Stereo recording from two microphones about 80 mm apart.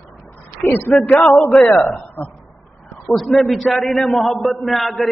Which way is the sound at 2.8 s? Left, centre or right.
Centre.